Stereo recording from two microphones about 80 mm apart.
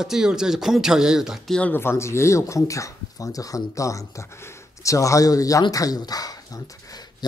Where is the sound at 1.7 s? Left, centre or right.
Left.